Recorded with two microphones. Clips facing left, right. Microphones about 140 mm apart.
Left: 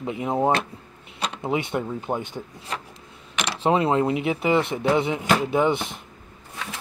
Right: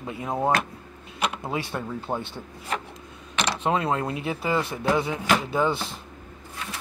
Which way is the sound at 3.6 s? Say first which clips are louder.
Left 6 dB; 25° left (ahead or behind).